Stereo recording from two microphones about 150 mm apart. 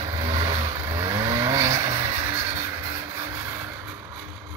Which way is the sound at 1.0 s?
35° right (ahead or behind).